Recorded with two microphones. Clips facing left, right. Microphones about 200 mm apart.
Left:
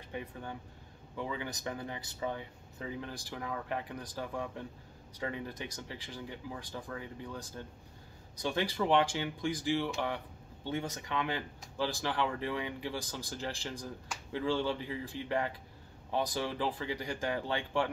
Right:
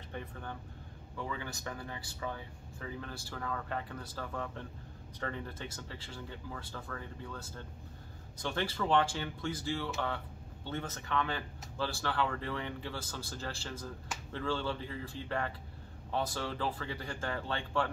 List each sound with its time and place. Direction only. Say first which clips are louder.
0.1 s speech: left 2 dB; 15° left (ahead or behind)